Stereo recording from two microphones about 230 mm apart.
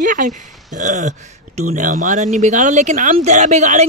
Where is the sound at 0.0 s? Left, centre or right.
Right.